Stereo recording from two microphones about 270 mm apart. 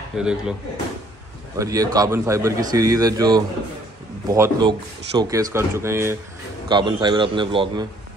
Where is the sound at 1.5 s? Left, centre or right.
Centre.